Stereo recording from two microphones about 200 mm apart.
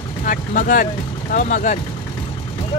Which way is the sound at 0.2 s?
40° left (ahead or behind).